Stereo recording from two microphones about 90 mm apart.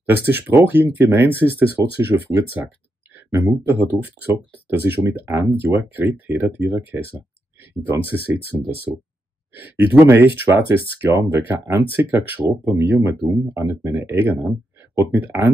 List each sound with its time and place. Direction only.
0.0 s speech: 20° right (ahead or behind)
3.6 s speech: 20° right (ahead or behind)